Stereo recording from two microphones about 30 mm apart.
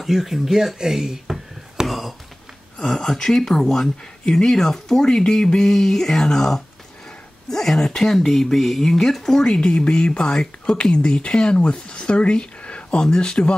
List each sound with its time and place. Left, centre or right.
0.0 s speech: centre
1.9 s a sound: centre
3.0 s speech: centre
9.4 s speech: left
13.0 s speech: left